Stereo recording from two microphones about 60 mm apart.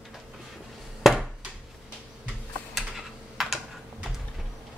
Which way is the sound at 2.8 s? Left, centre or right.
Centre.